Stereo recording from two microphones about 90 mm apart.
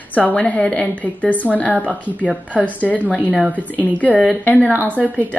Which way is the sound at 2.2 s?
15° left (ahead or behind).